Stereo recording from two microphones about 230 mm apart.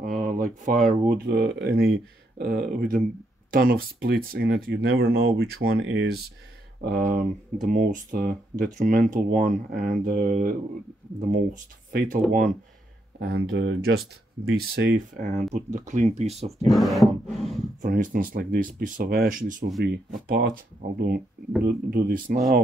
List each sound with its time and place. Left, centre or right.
0.0 s a sound: right
1.0 s speech: right
13.5 s speech: right
16.6 s a sound: centre
17.8 s speech: right
21.6 s speech: right